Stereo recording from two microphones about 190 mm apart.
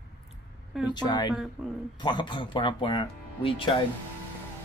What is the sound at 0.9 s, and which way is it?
Speech, 20° left (ahead or behind).